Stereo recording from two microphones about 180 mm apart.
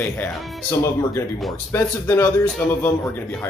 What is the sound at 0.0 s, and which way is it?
Speech, 10° left (ahead or behind).